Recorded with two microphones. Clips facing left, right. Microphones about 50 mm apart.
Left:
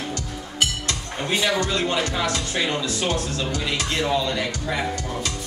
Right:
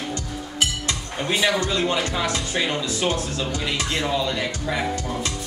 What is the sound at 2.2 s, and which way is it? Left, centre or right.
Speech, centre.